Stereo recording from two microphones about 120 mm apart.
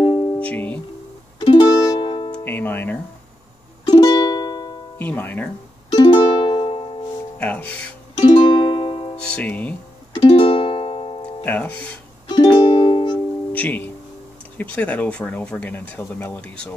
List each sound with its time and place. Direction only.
0.0 s music: 45° left (ahead or behind)
0.4 s music: 10° left (ahead or behind)
1.4 s music: 35° left (ahead or behind)
2.3 s speech: 15° left (ahead or behind)
3.9 s music: 35° left (ahead or behind)
4.9 s speech: 15° left (ahead or behind)
6.0 s music: 45° left (ahead or behind)
7.3 s speech: 10° left (ahead or behind)
8.3 s music: 45° left (ahead or behind)
9.1 s speech: 10° left (ahead or behind)
10.2 s music: 50° left (ahead or behind)
11.4 s speech: 15° left (ahead or behind)
12.3 s music: 40° left (ahead or behind)
13.5 s speech: 15° left (ahead or behind)